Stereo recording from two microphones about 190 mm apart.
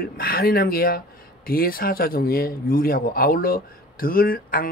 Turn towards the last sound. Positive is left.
turn(degrees=50)  # may be behind; listen again after turning